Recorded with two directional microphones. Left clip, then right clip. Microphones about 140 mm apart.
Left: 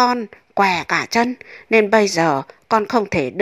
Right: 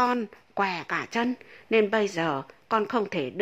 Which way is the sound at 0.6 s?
35° left (ahead or behind).